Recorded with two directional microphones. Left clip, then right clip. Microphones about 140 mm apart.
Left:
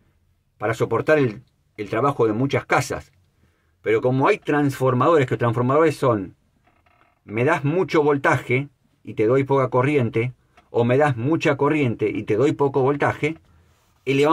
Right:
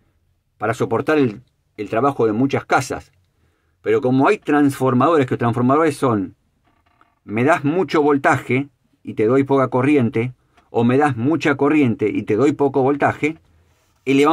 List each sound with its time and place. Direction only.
0.6 s speech: 25° right (ahead or behind)